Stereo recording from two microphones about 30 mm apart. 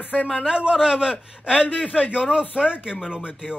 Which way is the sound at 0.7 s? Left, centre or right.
Right.